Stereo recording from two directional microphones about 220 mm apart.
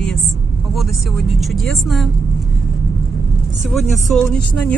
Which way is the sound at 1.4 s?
Centre (ahead or behind).